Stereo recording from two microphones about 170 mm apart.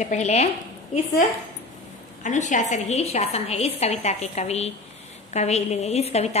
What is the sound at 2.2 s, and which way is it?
A woman's voice, 45° left (ahead or behind).